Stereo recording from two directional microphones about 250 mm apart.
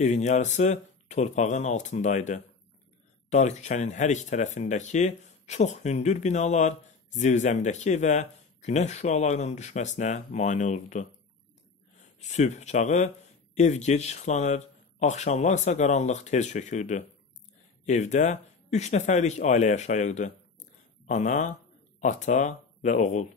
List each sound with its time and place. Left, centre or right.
0.0 s speech: left